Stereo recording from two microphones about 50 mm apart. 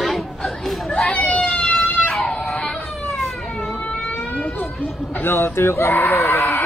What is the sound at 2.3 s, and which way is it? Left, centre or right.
Baby cry, centre.